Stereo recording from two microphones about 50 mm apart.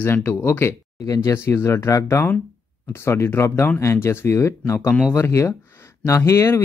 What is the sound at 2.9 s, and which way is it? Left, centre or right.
Speech, left.